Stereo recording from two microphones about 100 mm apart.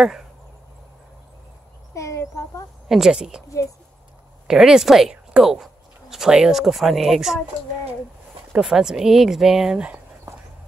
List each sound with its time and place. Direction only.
0.0 s speech: 5° right (ahead or behind)
2.0 s a sound: 30° left (ahead or behind)
2.9 s speech: 5° right (ahead or behind)
4.5 s speech: 5° right (ahead or behind)
8.5 s speech: 5° right (ahead or behind)